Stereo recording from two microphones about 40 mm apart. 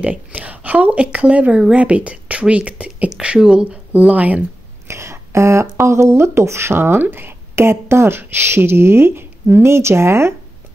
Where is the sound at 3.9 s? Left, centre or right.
Right.